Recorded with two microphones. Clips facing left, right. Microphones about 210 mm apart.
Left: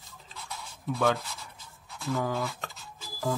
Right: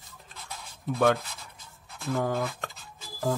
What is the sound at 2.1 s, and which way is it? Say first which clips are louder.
Speech: right 2 dB; 55° right (ahead or behind).